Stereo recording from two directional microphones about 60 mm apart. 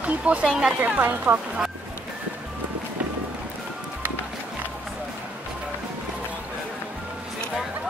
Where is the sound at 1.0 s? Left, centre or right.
Right.